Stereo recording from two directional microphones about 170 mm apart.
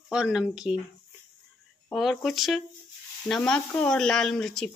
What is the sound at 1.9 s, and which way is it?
A woman's voice, centre (ahead or behind).